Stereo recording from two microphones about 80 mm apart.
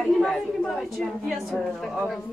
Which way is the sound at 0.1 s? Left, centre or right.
Centre.